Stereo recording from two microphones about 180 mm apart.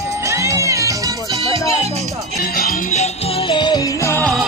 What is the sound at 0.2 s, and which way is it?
Music, 15° right (ahead or behind).